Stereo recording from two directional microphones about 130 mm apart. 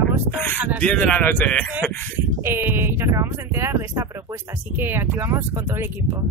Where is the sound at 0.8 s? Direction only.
10° left (ahead or behind).